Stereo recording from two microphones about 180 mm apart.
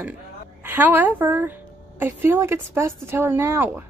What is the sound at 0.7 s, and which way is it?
Speech, 10° right (ahead or behind).